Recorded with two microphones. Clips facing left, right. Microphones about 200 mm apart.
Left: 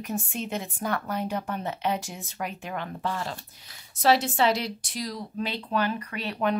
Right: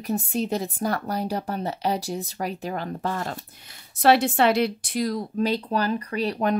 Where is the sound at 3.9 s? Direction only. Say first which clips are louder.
Right 4 dB; 60° right (ahead or behind).